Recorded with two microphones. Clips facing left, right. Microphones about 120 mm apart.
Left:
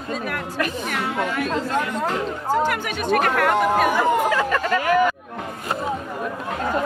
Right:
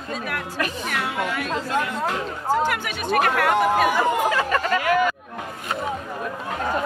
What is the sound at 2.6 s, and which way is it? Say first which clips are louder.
Speech: left 2 dB; 5° right (ahead or behind).